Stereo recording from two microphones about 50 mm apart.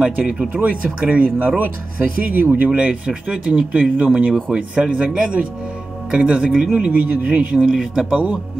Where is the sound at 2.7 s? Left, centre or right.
Right.